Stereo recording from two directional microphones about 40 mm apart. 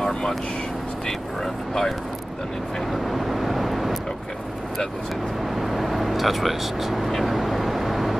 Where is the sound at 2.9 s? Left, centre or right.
Centre.